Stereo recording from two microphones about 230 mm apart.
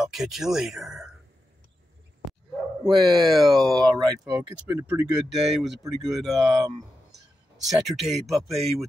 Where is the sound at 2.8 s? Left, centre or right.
Centre.